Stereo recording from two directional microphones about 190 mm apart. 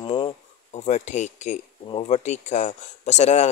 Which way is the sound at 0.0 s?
25° left (ahead or behind).